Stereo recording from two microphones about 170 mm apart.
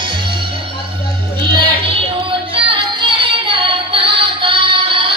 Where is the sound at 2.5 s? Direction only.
30° right (ahead or behind).